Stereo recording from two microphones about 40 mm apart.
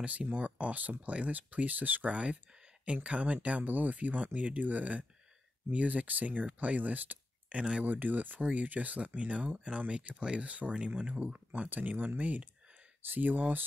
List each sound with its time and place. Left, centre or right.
0.0 s speech: right
2.8 s speech: right
7.9 s speech: right
11.7 s speech: right